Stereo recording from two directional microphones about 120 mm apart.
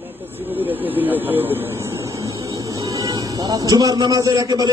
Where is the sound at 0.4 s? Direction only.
15° right (ahead or behind).